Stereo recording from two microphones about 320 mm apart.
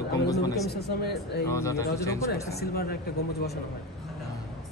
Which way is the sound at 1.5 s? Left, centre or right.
Centre.